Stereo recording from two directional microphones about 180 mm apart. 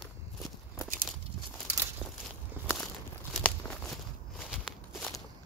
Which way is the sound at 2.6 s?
10° right (ahead or behind).